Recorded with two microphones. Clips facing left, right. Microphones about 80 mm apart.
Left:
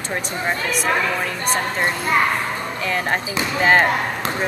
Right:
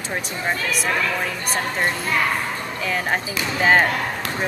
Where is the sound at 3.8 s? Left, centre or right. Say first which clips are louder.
Left 3 dB; left.